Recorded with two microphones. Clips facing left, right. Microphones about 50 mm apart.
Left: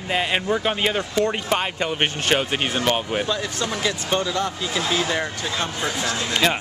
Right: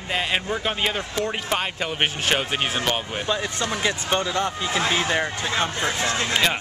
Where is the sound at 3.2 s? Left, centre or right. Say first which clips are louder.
Even; right.